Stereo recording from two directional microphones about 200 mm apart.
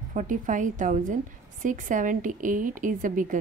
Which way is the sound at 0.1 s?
40° right (ahead or behind).